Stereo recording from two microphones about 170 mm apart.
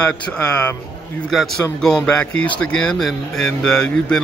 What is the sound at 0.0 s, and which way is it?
Speech, 5° left (ahead or behind).